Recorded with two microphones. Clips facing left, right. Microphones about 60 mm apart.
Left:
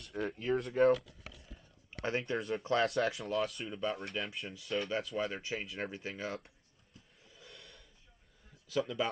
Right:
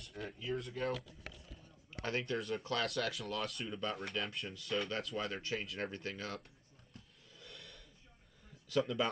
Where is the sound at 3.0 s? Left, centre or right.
Left.